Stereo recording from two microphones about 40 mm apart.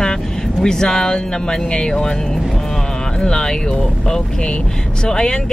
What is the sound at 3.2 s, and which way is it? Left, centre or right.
Speech, centre.